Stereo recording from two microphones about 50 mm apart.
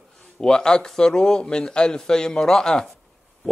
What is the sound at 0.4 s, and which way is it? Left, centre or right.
A man's voice, centre.